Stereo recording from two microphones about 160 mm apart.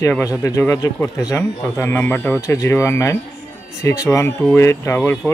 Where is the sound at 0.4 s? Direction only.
20° left (ahead or behind).